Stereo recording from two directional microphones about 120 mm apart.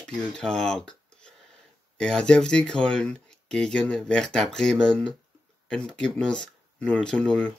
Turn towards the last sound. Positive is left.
turn(degrees=5)  # may be behind; listen again after turning